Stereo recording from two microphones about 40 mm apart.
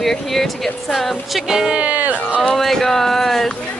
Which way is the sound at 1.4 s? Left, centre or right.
Centre.